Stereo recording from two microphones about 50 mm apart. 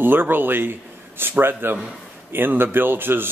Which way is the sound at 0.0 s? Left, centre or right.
Right.